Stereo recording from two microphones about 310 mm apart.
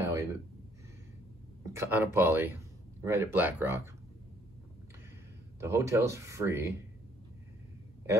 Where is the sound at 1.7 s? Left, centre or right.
Centre.